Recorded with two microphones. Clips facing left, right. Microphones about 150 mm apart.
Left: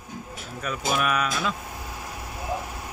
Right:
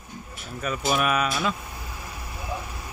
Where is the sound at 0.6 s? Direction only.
5° right (ahead or behind).